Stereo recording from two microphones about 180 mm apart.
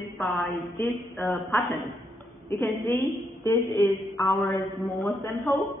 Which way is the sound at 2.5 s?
15° left (ahead or behind).